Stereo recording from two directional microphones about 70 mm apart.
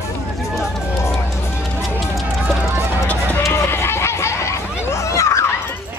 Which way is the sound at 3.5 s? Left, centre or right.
Left.